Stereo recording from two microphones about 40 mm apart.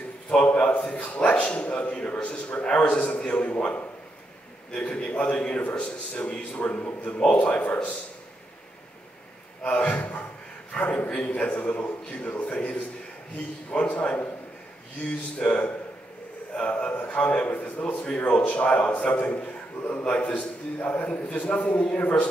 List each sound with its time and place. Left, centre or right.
0.7 s a man's voice: left
5.6 s a man's voice: left
6.6 s a man's voice: left
7.0 s a man's voice: left
9.6 s a man's voice: left
15.3 s a man's voice: left